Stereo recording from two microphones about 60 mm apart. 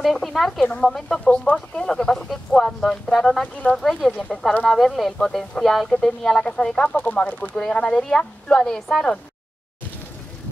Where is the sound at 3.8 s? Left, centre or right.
Centre.